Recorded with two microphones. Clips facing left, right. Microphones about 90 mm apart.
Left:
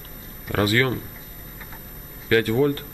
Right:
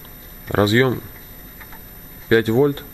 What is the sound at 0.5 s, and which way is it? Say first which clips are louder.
Speech: right 5 dB; 25° right (ahead or behind).